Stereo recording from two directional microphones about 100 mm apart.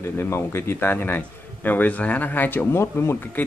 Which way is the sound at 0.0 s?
25° left (ahead or behind).